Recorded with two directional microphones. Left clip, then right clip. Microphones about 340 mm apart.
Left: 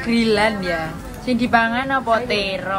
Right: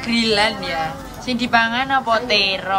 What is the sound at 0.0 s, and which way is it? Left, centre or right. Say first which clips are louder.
A woman's voice: even; centre.